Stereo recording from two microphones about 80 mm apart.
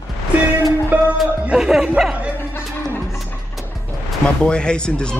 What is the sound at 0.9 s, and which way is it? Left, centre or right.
Music, centre.